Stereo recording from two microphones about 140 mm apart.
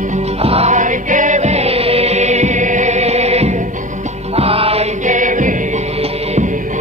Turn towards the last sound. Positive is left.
turn(degrees=-65)  # may be behind; listen again after turning